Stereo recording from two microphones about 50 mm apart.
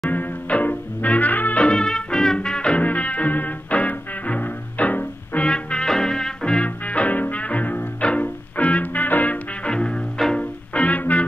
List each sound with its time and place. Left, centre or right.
0.1 s music: left
1.7 s music: centre
2.7 s music: left
6.9 s music: left
9.7 s music: centre
10.4 s music: left